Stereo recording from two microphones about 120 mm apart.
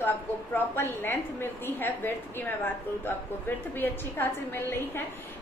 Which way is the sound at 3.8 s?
15° left (ahead or behind).